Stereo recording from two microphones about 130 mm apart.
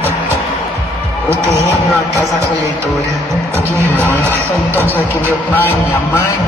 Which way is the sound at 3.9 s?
15° left (ahead or behind).